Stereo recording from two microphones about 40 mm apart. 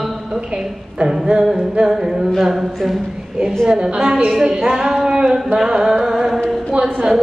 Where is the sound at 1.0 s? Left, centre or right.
Centre.